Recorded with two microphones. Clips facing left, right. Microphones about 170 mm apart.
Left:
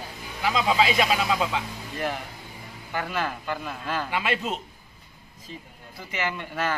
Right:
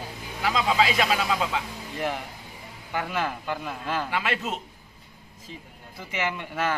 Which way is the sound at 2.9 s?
10° right (ahead or behind).